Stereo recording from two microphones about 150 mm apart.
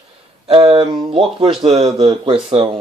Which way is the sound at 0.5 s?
35° right (ahead or behind).